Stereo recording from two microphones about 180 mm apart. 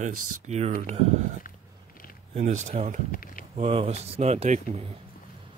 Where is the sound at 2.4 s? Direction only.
45° right (ahead or behind).